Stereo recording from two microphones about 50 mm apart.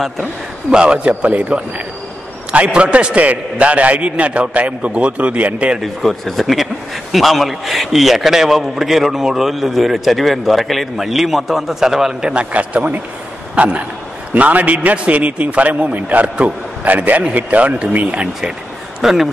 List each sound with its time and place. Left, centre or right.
0.7 s a man's voice: centre
5.8 s a man's voice: centre
12.5 s a man's voice: right
18.9 s speech: centre